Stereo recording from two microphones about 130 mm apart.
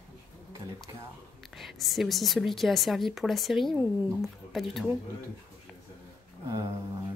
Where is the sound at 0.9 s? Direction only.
30° right (ahead or behind).